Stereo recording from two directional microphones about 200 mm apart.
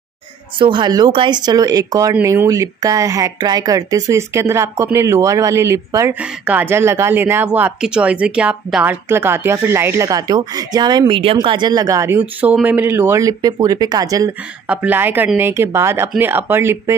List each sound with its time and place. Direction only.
0.6 s speech: 25° right (ahead or behind)